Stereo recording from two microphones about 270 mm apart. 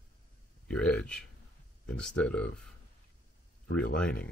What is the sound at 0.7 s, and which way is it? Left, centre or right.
Speech, centre.